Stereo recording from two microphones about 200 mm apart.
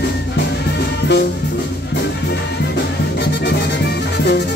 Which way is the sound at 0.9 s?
55° left (ahead or behind).